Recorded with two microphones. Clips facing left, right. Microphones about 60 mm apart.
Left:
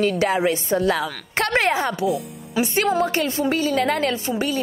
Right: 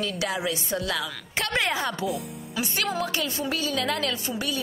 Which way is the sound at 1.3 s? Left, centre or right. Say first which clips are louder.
Left 6 dB; left.